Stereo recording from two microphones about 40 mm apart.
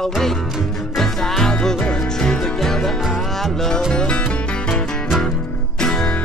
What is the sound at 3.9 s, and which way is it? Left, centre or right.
Music, centre.